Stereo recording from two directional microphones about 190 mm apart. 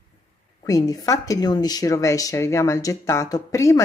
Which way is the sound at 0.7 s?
20° left (ahead or behind).